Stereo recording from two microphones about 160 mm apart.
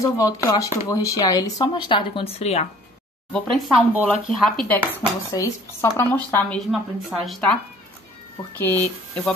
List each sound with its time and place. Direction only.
0.0 s speech: 20° left (ahead or behind); by 2.7 s 40° left (ahead or behind)
3.5 s speech: centre (ahead or behind)
5.3 s speech: 20° left (ahead or behind)
6.7 s speech: centre (ahead or behind)
8.5 s speech: 10° left (ahead or behind)